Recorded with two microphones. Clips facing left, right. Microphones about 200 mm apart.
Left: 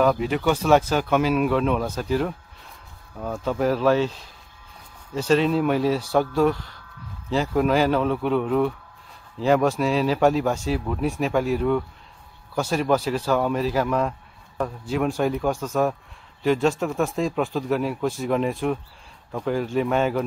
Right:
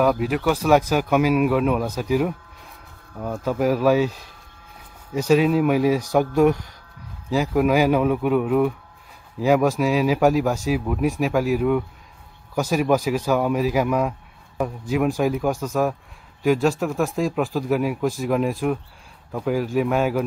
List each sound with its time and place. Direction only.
0.0 s speech: 5° right (ahead or behind)